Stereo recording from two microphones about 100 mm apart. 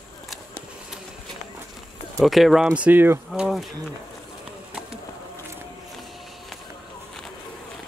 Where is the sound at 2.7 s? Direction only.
15° right (ahead or behind).